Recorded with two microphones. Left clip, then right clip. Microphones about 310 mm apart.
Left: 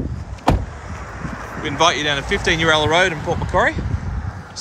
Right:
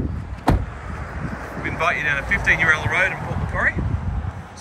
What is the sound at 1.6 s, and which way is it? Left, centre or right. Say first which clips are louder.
Speech: left 4 dB; centre.